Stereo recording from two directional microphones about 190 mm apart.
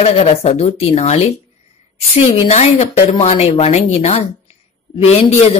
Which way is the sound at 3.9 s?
35° left (ahead or behind).